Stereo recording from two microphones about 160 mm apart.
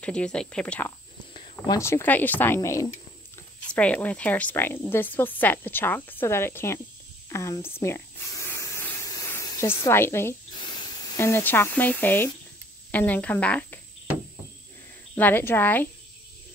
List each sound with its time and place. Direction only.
0.0 s a woman's voice: 5° left (ahead or behind)
7.2 s spray: 20° left (ahead or behind)
10.6 s a woman's voice: 30° left (ahead or behind); by 13.7 s 10° left (ahead or behind)
15.1 s a woman's voice: 10° left (ahead or behind)